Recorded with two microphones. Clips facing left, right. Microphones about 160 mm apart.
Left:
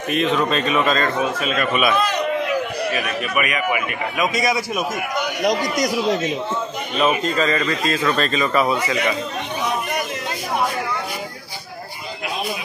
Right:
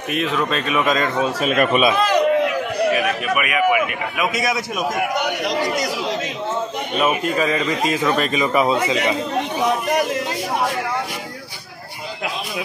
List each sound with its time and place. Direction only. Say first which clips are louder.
0.1 s a man's voice: left 2 dB; 5° right (ahead or behind)
1.4 s speech: right 4 dB; 45° right (ahead or behind)
3.3 s speech: right 3 dB; 5° right (ahead or behind)
7.0 s speech: even; 10° right (ahead or behind)